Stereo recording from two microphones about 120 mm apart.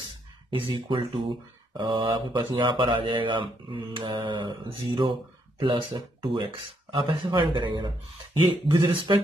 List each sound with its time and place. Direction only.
0.7 s speech: 45° right (ahead or behind)